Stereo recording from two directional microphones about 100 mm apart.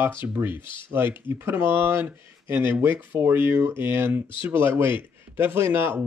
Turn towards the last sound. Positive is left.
turn(degrees=-20)  # may be behind; listen again after turning